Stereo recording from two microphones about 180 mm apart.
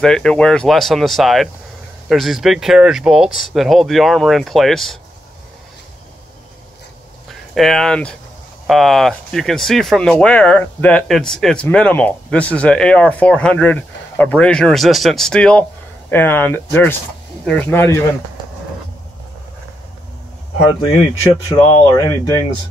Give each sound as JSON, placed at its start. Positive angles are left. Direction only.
{"t": 0.0, "sound": "speech", "side_deg": 5}
{"t": 7.2, "sound": "speech", "side_deg": 0}
{"t": 20.5, "sound": "speech", "side_deg": 35}
{"t": 21.5, "sound": "speech", "side_deg": 20}